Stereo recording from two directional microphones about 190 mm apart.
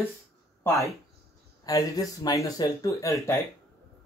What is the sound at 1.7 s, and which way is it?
Speech, 20° left (ahead or behind).